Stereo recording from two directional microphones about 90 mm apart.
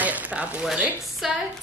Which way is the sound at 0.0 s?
20° right (ahead or behind).